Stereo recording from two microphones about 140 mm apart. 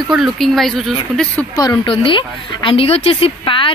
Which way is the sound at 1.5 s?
35° left (ahead or behind).